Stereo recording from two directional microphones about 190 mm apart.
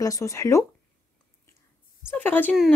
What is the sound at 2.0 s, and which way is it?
Speech, 10° left (ahead or behind).